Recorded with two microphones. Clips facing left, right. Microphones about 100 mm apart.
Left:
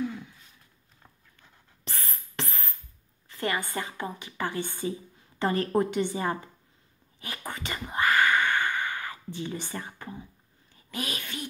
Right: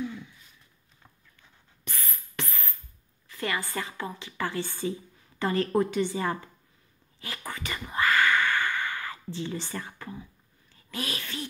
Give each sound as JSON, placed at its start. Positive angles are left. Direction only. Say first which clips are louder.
{"t": 1.9, "sound": "music", "louder": "left 1 dB", "side_deg": 30}
{"t": 3.3, "sound": "a woman's voice", "louder": "left 1 dB", "side_deg": 25}
{"t": 7.2, "sound": "whispering", "louder": "even", "side_deg": 20}
{"t": 10.7, "sound": "a sound", "louder": "even", "side_deg": 15}